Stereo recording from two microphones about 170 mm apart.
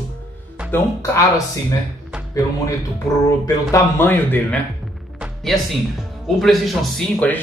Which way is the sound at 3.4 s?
15° left (ahead or behind).